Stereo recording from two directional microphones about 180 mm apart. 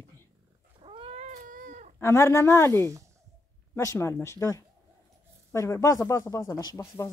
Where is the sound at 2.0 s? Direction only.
15° left (ahead or behind).